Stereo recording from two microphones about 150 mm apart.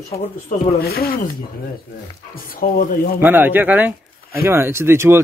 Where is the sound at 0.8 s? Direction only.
90° left.